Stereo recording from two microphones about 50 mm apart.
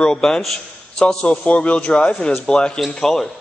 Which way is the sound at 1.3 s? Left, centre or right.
Left.